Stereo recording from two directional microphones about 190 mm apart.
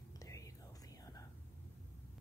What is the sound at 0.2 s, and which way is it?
Whispering, 15° left (ahead or behind).